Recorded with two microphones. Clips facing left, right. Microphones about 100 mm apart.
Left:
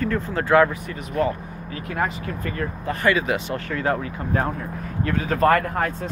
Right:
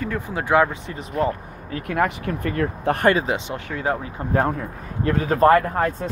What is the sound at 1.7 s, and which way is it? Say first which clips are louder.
Speech: right 4 dB; 55° right (ahead or behind).